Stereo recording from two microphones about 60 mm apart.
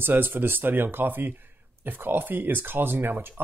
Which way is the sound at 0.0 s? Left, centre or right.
Right.